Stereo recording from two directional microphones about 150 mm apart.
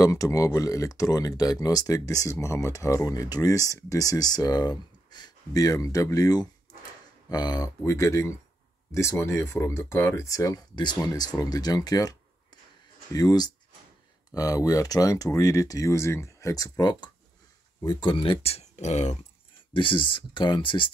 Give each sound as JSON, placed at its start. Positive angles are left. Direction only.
{"t": 0.0, "sound": "speech", "side_deg": 20}
{"t": 19.7, "sound": "speech", "side_deg": 35}